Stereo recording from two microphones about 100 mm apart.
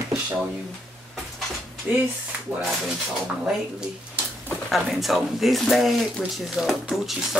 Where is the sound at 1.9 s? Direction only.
20° right (ahead or behind).